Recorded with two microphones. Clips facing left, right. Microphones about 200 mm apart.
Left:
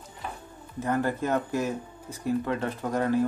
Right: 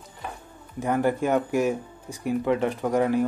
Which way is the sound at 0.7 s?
15° right (ahead or behind).